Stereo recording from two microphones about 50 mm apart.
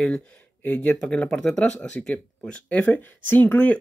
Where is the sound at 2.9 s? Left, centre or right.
Left.